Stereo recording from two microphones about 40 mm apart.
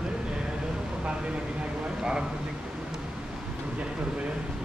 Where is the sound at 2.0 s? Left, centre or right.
Centre.